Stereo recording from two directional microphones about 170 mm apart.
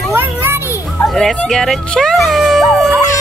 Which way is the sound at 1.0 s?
Centre (ahead or behind).